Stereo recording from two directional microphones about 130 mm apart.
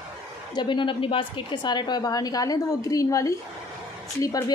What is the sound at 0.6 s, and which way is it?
A woman's voice, 40° left (ahead or behind).